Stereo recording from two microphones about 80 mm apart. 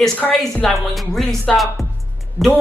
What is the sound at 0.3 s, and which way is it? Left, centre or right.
A woman's voice, centre.